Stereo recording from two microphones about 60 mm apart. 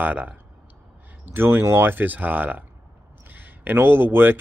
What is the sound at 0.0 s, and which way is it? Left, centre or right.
Speech, right.